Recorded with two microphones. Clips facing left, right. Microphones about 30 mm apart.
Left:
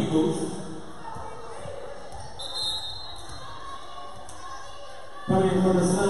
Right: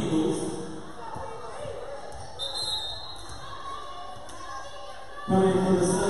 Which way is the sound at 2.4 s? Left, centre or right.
Centre.